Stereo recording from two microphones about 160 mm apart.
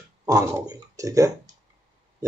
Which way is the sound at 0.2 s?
20° right (ahead or behind).